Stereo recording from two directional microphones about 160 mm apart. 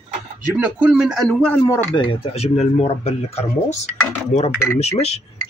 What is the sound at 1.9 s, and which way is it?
Speech, 35° left (ahead or behind).